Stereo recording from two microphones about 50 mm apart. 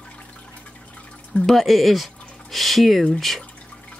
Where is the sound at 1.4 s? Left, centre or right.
Centre.